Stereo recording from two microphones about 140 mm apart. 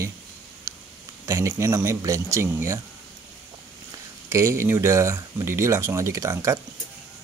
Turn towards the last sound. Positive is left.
turn(degrees=-20)  # may be behind; listen again after turning